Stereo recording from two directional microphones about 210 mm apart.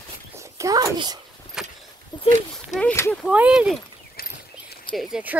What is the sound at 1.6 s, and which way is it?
Vehicle, 5° right (ahead or behind).